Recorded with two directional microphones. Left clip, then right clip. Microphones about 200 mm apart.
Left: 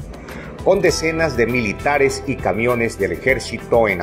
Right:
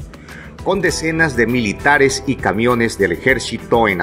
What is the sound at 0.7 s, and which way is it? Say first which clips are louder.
Speech: right 1 dB; 35° right (ahead or behind).